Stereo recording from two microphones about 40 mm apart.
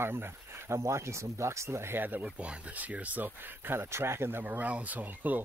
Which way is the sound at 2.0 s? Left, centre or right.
Right.